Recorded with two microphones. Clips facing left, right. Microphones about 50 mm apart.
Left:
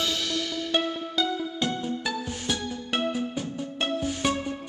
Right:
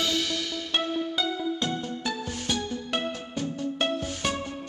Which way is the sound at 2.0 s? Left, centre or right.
Centre.